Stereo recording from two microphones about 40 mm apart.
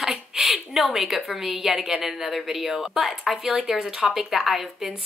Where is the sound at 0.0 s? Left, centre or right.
Centre.